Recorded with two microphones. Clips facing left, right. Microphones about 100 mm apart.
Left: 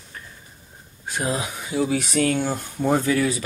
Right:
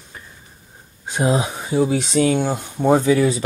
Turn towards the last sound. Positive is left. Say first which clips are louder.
# right 5 dB
turn(degrees=-25)  # may be behind; listen again after turning